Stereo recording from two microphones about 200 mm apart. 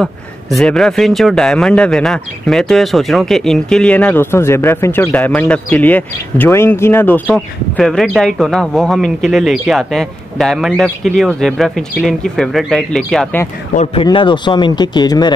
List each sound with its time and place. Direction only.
0.0 s a man's voice: centre (ahead or behind)
14.0 s speech: 25° left (ahead or behind)